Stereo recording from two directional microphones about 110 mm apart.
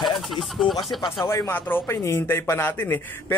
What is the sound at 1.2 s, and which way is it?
Speech, 20° left (ahead or behind).